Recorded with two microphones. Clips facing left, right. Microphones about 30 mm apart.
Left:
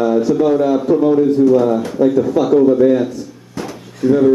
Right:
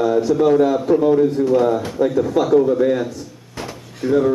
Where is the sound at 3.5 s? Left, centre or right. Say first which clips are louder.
Left 4 dB; centre.